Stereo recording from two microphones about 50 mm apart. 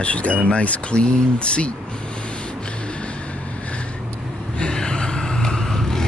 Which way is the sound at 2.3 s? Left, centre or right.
Left.